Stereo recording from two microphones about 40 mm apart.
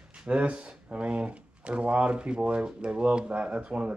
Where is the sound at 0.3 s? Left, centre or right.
Right.